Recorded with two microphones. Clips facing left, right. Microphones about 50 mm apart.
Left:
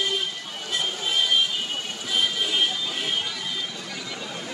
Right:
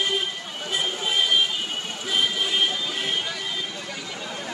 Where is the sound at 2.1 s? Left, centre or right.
Centre.